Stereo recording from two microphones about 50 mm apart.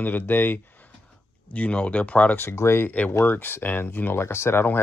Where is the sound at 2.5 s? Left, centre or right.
Left.